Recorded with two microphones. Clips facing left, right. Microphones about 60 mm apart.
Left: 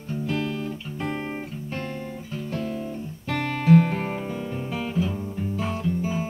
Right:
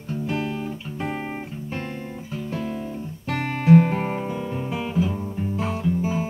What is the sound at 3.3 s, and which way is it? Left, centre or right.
Music, centre.